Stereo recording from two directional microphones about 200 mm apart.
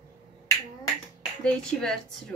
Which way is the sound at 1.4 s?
5° left (ahead or behind).